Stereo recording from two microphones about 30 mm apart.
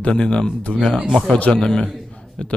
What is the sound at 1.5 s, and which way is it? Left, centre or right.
Speech, left.